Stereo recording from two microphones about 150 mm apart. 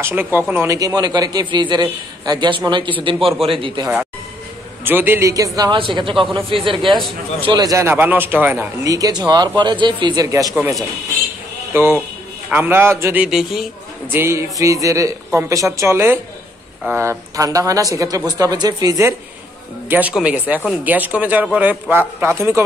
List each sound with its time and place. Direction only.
0.0 s a man's voice: 15° right (ahead or behind); by 3.9 s 30° right (ahead or behind)
4.8 s speech: 15° right (ahead or behind)
5.8 s a man's voice: 35° right (ahead or behind); by 8.6 s 10° right (ahead or behind)
8.8 s a man's voice: 25° right (ahead or behind)
11.7 s a man's voice: 15° right (ahead or behind)
14.1 s speech: 15° right (ahead or behind)
19.9 s a man's voice: 10° right (ahead or behind)